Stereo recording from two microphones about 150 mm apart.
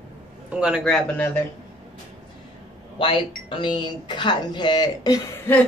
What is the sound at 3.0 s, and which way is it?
Speech, 35° left (ahead or behind).